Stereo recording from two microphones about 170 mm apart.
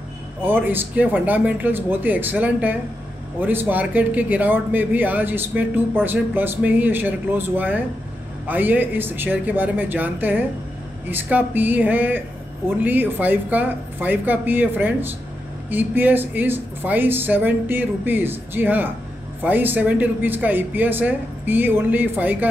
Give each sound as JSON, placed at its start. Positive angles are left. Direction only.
{"t": 0.4, "sound": "speech", "side_deg": -10}